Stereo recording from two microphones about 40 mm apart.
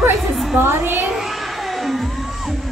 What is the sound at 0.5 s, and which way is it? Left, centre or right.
Speech, right.